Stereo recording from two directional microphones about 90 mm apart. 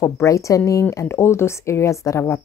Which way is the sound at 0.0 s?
35° left (ahead or behind).